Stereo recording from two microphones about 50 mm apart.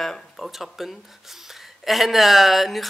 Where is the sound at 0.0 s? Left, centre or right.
Centre.